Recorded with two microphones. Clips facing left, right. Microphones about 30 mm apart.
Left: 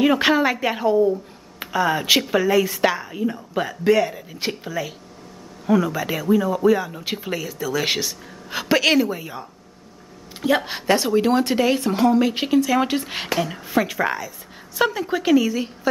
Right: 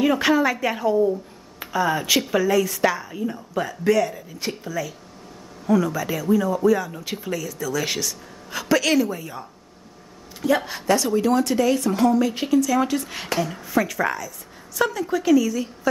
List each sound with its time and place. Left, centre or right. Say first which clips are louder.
0.0 s a woman's voice: left 2 dB; left